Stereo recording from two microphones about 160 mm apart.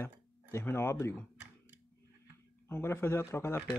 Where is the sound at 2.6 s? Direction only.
15° left (ahead or behind).